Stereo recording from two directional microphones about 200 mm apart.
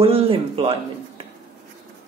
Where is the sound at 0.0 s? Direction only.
30° right (ahead or behind).